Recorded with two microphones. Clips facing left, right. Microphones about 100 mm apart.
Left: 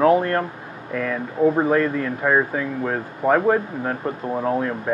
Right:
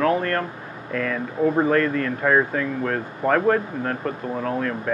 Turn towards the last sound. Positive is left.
turn(degrees=20)  # may be behind; listen again after turning